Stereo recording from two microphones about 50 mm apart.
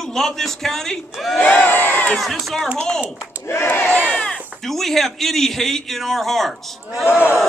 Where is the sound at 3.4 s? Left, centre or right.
Left.